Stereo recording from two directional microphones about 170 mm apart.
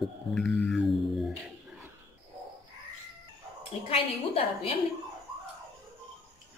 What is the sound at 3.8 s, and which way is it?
Speech, 35° left (ahead or behind).